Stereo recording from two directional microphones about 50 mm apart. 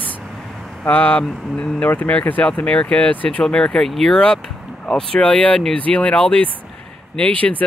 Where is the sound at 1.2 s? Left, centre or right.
Centre.